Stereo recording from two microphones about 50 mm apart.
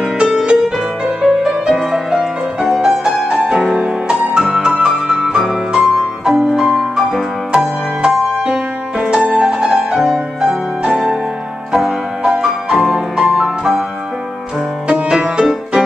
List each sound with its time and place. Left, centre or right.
0.5 s music: centre
14.9 s music: centre